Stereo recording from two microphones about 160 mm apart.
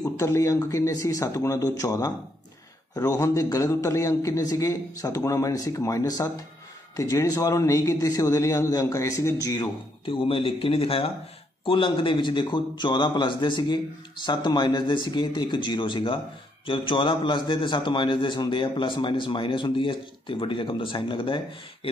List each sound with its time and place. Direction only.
0.2 s a man's voice: 20° left (ahead or behind)